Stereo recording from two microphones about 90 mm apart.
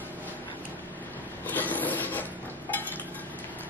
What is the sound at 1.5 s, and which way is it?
Printer, 20° left (ahead or behind).